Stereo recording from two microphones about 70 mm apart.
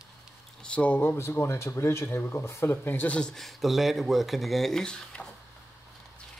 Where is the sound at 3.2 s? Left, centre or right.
Centre.